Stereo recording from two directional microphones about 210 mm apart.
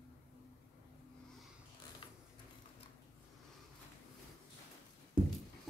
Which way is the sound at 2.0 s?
25° left (ahead or behind).